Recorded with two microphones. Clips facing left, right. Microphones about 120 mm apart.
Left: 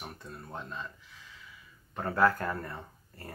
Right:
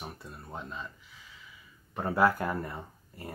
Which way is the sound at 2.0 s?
10° right (ahead or behind).